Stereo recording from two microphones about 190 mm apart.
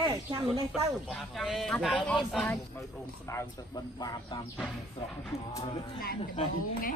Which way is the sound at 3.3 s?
20° left (ahead or behind).